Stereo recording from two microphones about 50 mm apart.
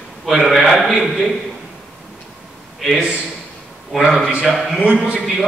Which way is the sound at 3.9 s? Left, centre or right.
Centre.